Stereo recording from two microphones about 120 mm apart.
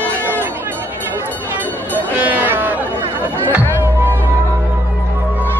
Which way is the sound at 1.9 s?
15° right (ahead or behind).